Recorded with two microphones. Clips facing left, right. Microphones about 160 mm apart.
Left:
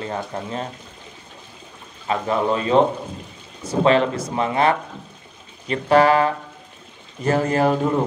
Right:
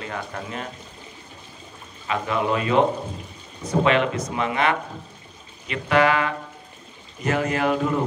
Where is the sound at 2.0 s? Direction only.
35° left (ahead or behind).